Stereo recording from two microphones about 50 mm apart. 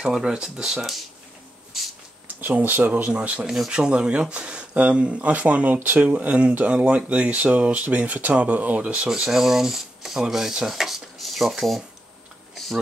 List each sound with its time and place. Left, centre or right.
0.0 s speech: centre
2.4 s speech: right
3.4 s speech: centre
3.7 s speech: centre
9.3 s speech: centre
12.5 s a sound: centre